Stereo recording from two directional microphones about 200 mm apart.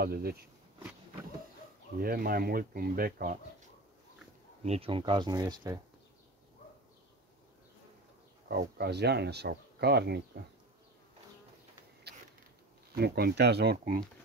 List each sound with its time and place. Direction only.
0.0 s speech: 50° right (ahead or behind)
2.0 s speech: 45° right (ahead or behind)
4.6 s speech: 30° right (ahead or behind)
8.5 s speech: 55° right (ahead or behind)
12.9 s speech: 50° right (ahead or behind)